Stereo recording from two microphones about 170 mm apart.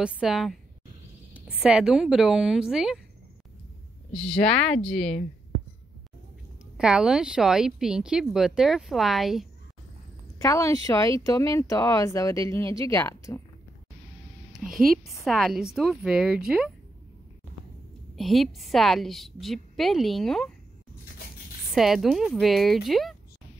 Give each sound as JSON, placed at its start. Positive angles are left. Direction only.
{"t": 0.0, "sound": "a woman's voice", "side_deg": -5}
{"t": 4.1, "sound": "a woman's voice", "side_deg": 5}
{"t": 6.8, "sound": "a woman's voice", "side_deg": -5}
{"t": 10.4, "sound": "a woman's voice", "side_deg": 20}
{"t": 14.9, "sound": "a woman's voice", "side_deg": 0}
{"t": 18.1, "sound": "a woman's voice", "side_deg": 0}
{"t": 21.7, "sound": "a woman's voice", "side_deg": 0}